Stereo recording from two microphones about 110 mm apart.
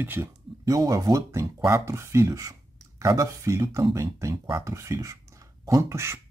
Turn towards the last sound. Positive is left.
turn(degrees=-25)  # may be behind; listen again after turning